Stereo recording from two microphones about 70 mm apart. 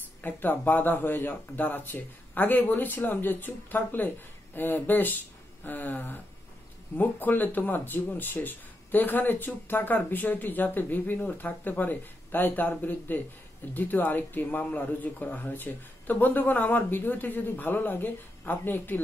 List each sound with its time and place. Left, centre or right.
0.2 s speech: left